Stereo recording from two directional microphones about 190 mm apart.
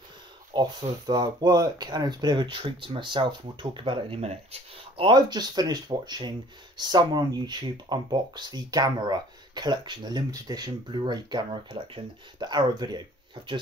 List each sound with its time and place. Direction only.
0.5 s speech: 25° right (ahead or behind)